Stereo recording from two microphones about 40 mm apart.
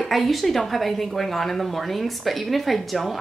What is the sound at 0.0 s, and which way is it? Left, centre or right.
Speech, centre.